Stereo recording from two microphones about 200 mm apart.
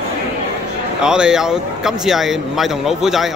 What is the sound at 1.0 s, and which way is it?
A man's voice, 5° right (ahead or behind).